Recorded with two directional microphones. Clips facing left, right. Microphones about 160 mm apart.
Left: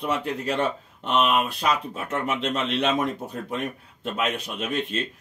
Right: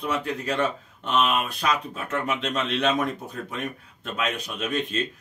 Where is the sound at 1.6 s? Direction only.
25° left (ahead or behind).